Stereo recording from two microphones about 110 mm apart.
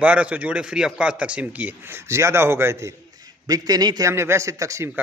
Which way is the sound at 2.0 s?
25° right (ahead or behind).